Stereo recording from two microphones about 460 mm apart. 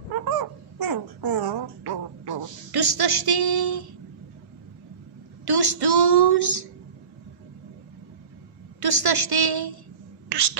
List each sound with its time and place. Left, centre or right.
0.2 s babbling: right
5.4 s a woman's voice: right
8.7 s a woman's voice: right